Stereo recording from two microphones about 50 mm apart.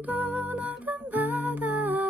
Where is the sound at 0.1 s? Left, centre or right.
Right.